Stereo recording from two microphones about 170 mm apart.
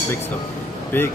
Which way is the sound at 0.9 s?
10° left (ahead or behind).